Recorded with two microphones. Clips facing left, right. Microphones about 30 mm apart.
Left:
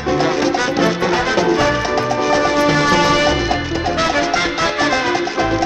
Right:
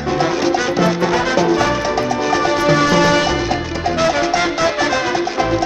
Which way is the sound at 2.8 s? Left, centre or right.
Centre.